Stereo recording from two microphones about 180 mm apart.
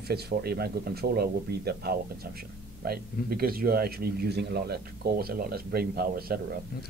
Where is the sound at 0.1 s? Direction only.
60° right (ahead or behind).